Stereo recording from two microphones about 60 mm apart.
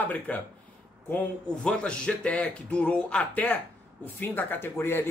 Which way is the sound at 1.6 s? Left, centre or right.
Centre.